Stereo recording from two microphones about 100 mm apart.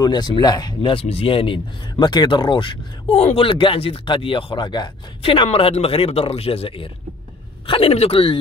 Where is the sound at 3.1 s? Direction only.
90° left; by 4.9 s 50° left (ahead or behind).